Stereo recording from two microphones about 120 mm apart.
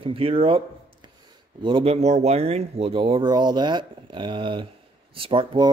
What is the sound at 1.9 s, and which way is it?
Speech, 70° right (ahead or behind).